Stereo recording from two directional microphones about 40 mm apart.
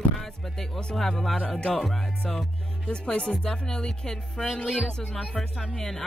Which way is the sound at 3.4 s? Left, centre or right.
Centre.